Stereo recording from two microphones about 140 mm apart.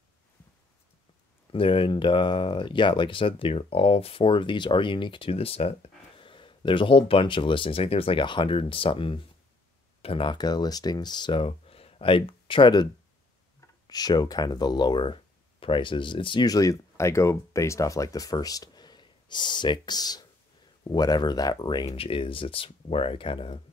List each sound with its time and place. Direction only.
1.5 s speech: 40° left (ahead or behind)
13.8 s speech: 30° left (ahead or behind)